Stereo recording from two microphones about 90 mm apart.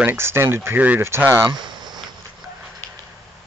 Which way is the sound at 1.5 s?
5° right (ahead or behind).